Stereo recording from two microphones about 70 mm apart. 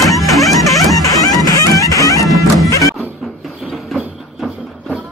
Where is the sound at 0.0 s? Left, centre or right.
Centre.